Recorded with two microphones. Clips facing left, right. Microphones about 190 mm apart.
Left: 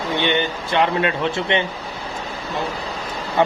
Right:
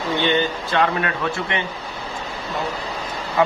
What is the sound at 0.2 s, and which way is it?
Speech, 20° left (ahead or behind).